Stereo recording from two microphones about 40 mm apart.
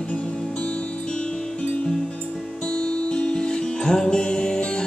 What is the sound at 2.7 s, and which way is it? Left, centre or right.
Music, left.